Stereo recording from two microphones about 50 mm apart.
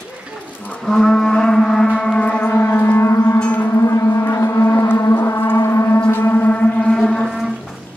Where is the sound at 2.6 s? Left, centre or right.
Left.